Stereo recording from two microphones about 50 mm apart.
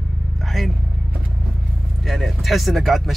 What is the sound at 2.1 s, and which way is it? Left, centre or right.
Speech, centre.